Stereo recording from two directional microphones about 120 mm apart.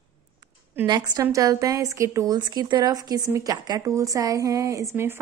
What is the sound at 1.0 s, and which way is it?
A woman's voice, 25° right (ahead or behind).